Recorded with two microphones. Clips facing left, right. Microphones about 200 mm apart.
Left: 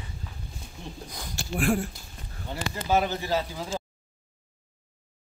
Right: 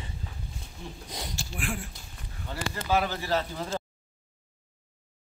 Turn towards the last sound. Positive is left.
turn(degrees=10)  # may be behind; listen again after turning